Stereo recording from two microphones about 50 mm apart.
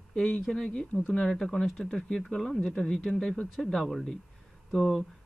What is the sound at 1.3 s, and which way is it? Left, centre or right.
A woman's voice, centre.